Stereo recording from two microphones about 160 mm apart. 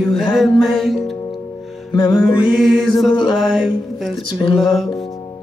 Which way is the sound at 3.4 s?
Centre (ahead or behind).